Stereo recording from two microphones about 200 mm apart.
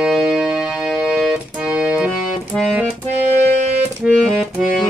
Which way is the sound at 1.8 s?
5° right (ahead or behind).